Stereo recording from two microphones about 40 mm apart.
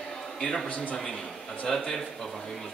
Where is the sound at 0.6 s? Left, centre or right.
Left.